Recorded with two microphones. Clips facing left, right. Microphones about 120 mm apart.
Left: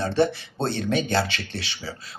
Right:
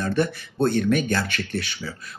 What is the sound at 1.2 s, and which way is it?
Speech, 55° right (ahead or behind).